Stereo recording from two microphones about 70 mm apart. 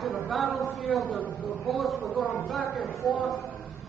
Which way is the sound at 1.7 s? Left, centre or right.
Centre.